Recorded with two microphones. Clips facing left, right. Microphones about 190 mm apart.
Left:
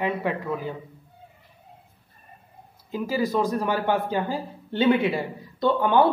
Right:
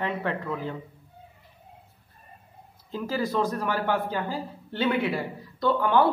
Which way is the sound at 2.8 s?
10° left (ahead or behind).